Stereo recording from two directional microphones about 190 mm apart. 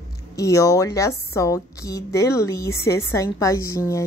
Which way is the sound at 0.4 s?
15° left (ahead or behind).